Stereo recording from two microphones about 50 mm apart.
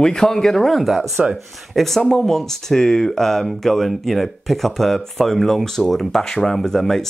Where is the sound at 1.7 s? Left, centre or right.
Centre.